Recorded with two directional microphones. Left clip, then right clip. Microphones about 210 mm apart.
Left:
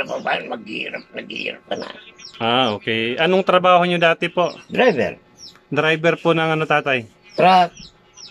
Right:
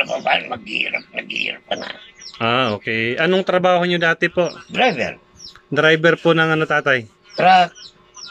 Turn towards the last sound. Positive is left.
turn(degrees=5)  # may be behind; listen again after turning